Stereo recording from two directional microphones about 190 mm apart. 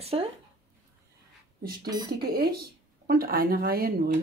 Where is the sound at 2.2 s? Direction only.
55° right (ahead or behind).